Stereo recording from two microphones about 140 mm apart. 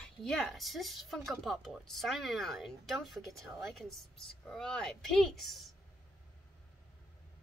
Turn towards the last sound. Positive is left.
turn(degrees=0)  # may be behind; listen again after turning